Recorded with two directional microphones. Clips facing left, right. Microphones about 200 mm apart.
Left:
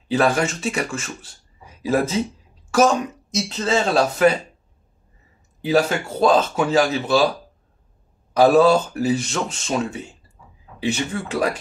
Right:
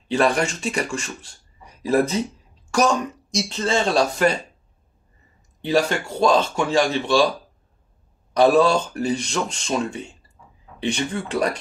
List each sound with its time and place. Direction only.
0.1 s speech: centre (ahead or behind)
3.3 s speech: 5° left (ahead or behind)
5.6 s speech: 5° left (ahead or behind)
8.3 s speech: 5° left (ahead or behind)